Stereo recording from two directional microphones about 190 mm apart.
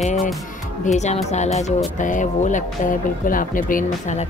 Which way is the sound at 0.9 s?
35° left (ahead or behind).